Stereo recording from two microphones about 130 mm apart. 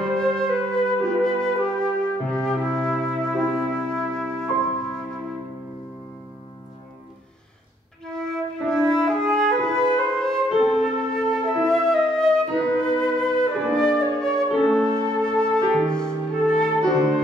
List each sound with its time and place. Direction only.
0.4 s music: 5° left (ahead or behind)
8.1 s music: 5° left (ahead or behind)